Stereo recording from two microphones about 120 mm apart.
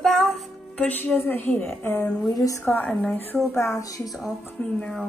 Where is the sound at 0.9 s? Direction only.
15° left (ahead or behind).